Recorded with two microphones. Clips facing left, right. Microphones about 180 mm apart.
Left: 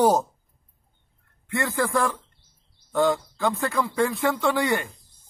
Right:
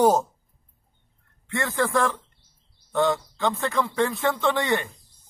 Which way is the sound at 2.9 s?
Centre (ahead or behind).